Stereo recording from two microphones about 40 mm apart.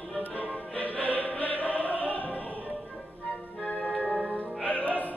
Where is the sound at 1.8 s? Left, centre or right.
Left.